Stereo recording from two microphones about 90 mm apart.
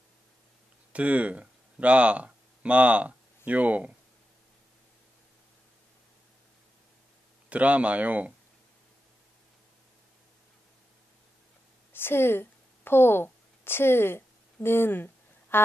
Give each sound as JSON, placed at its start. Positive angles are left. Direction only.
{"t": 0.9, "sound": "speech", "side_deg": -15}
{"t": 7.4, "sound": "speech", "side_deg": -15}
{"t": 11.9, "sound": "a sound", "side_deg": 25}
{"t": 15.5, "sound": "speech", "side_deg": 25}